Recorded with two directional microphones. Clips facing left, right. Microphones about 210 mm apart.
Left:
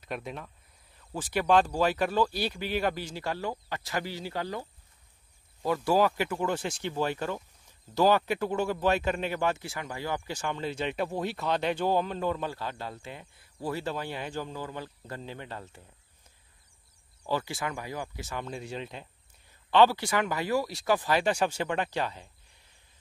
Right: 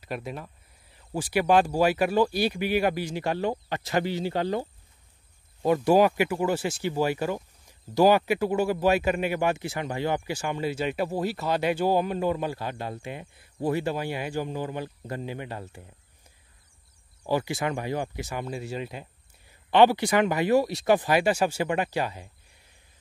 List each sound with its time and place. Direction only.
0.0 s speech: 5° right (ahead or behind); by 10.2 s 25° right (ahead or behind)
10.2 s speech: 10° right (ahead or behind)
17.2 s speech: 15° right (ahead or behind)
19.7 s speech: 15° right (ahead or behind)